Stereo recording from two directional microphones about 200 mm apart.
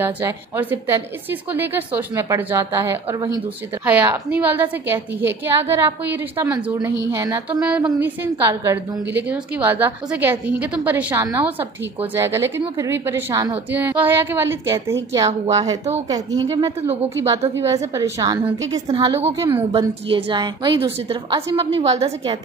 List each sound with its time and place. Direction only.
0.0 s a woman's voice: 10° right (ahead or behind); by 22.4 s 30° right (ahead or behind)